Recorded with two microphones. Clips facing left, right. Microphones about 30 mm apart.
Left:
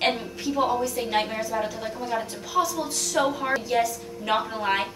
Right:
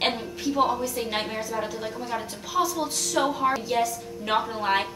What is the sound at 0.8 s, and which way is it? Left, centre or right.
A woman's voice, centre.